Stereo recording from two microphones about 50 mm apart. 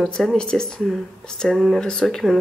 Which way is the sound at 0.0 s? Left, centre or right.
Centre.